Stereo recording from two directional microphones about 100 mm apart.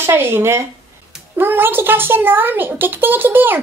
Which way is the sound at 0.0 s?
25° right (ahead or behind).